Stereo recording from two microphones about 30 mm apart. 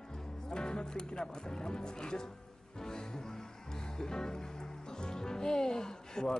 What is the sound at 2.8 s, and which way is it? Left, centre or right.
Music, left.